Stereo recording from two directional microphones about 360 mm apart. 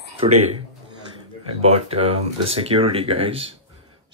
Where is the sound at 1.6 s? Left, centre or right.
Centre.